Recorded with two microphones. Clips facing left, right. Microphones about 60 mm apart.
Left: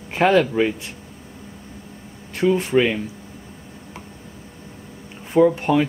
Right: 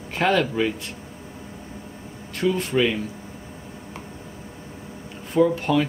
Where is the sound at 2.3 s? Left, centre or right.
Left.